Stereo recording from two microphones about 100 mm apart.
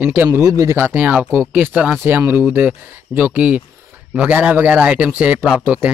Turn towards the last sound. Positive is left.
turn(degrees=-15)  # may be behind; listen again after turning